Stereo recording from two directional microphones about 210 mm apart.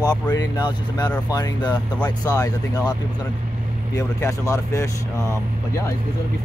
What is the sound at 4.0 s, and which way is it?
Speech, 15° left (ahead or behind).